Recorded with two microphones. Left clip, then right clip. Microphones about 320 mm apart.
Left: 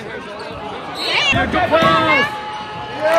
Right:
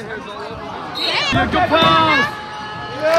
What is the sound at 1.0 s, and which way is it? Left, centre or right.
Speech, right.